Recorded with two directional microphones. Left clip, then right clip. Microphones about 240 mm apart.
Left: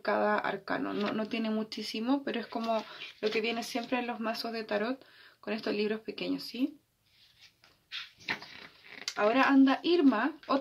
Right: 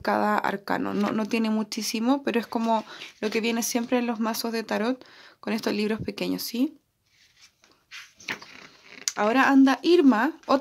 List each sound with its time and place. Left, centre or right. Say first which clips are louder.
0.0 s speech: right 5 dB; right
9.0 s speech: right 5 dB; right